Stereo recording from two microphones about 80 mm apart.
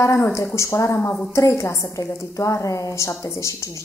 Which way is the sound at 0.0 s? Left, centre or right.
Left.